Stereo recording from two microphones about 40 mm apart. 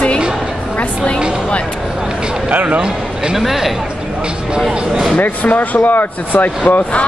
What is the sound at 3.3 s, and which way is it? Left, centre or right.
Speech, centre.